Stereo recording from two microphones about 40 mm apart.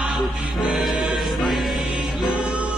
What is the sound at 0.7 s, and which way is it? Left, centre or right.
Music, centre.